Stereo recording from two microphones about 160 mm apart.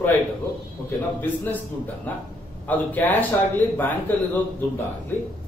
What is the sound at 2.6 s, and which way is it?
Speech, 10° left (ahead or behind).